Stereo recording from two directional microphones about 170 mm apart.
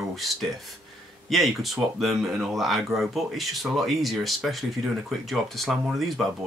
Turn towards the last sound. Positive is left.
turn(degrees=0)  # may be behind; listen again after turning